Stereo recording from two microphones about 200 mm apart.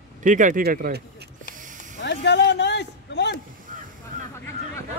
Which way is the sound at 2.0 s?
60° left (ahead or behind).